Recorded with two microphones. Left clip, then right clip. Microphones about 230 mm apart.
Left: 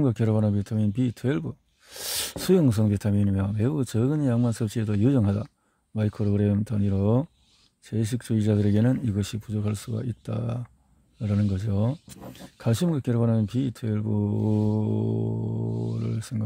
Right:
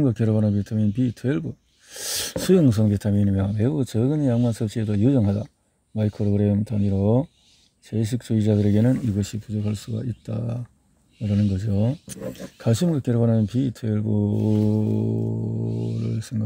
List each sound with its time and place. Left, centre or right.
0.0 s speech: centre